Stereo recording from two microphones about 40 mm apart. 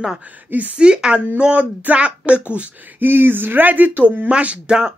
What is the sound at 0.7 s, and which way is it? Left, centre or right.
A child's voice, right.